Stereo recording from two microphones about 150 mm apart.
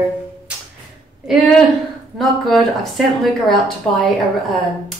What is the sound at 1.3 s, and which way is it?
Speech, centre (ahead or behind).